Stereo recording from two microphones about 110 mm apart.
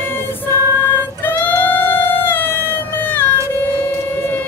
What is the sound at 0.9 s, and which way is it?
Music, 15° left (ahead or behind).